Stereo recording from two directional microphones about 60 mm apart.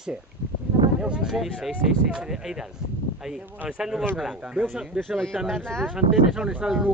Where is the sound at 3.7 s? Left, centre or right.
Centre.